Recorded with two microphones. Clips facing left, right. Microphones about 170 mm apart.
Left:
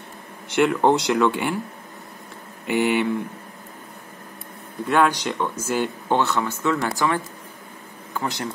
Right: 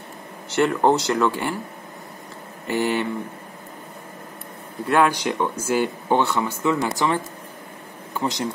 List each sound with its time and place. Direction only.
0.6 s speech: centre (ahead or behind)
2.6 s speech: centre (ahead or behind)
4.8 s speech: 5° right (ahead or behind)
8.2 s speech: 15° right (ahead or behind)